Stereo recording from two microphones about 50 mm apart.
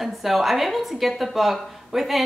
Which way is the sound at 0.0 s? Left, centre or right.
Centre.